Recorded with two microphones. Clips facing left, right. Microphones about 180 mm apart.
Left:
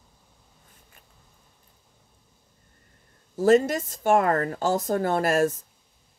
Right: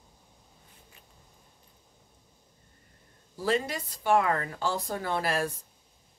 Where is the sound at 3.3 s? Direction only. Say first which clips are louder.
Left 10 dB; 45° left (ahead or behind).